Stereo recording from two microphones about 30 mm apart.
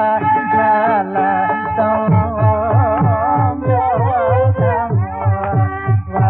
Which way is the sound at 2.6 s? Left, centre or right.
Centre.